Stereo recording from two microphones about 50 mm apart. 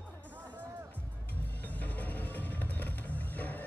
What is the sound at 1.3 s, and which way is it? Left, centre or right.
Music, left.